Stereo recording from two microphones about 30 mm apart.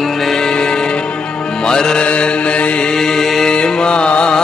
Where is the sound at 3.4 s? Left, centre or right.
Left.